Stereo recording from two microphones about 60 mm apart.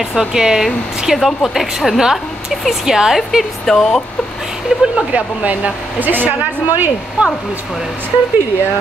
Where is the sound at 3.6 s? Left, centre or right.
Centre.